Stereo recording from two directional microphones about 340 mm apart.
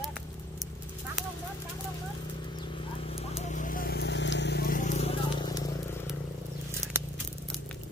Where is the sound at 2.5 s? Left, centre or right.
Centre.